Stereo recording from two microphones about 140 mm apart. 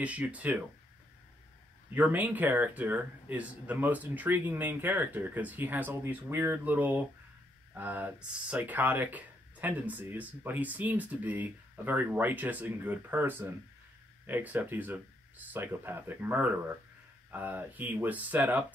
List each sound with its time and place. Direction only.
0.0 s speech: 10° right (ahead or behind)
2.0 s speech: 10° right (ahead or behind)